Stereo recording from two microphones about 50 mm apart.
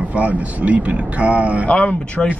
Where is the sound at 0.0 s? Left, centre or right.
Right.